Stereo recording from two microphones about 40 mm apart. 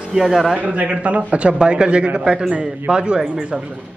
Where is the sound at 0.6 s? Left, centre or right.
Right.